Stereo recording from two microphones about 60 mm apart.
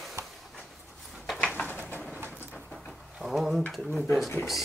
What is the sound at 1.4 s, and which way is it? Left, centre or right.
Bird, centre.